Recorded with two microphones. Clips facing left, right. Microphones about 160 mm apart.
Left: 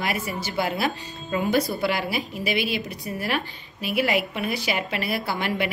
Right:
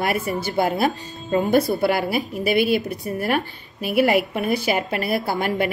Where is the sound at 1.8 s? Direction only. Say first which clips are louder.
Right 5 dB; 50° right (ahead or behind).